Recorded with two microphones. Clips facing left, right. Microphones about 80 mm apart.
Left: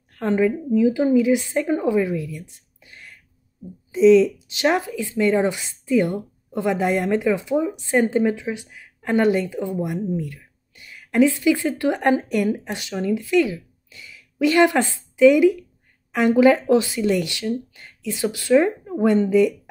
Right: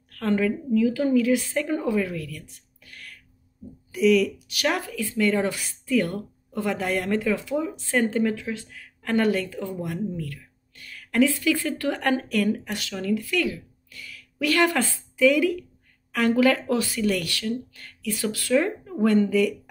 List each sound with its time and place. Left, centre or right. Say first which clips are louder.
0.1 s a woman's voice: left 4 dB; left
10.0 s a sound: left 5 dB; centre
11.8 s a woman's voice: left 5 dB; centre